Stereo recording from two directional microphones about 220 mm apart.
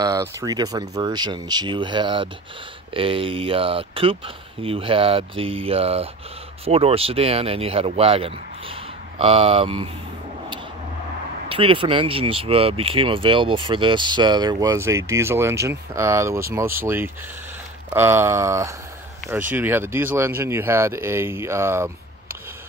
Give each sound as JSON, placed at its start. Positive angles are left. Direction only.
{"t": 0.0, "sound": "speech", "side_deg": -15}
{"t": 11.4, "sound": "speech", "side_deg": -25}